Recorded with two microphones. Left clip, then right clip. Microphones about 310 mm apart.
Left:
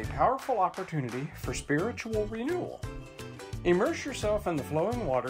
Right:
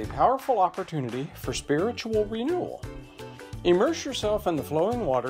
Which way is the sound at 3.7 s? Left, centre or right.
Right.